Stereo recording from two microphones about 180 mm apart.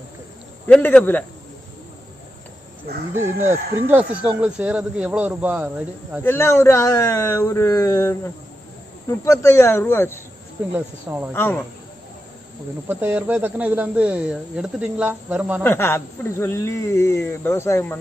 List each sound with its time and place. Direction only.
0.7 s speech: 5° left (ahead or behind)
3.4 s speech: 10° right (ahead or behind)
6.2 s speech: 15° left (ahead or behind)
10.7 s speech: 10° right (ahead or behind)
11.3 s speech: 10° left (ahead or behind)
12.8 s speech: 10° right (ahead or behind)
15.6 s speech: 15° left (ahead or behind)